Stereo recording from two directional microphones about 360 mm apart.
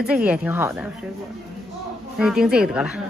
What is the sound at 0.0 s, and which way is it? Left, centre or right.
Speech, centre.